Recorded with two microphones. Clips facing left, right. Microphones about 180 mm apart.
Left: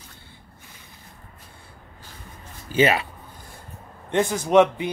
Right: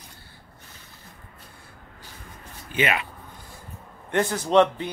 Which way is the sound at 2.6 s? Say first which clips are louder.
Left 6 dB; 35° left (ahead or behind).